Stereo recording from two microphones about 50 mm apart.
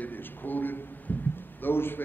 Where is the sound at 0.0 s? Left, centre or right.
Left.